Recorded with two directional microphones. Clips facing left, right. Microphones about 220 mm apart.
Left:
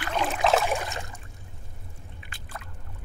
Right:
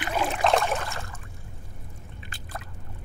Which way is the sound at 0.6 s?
15° left (ahead or behind).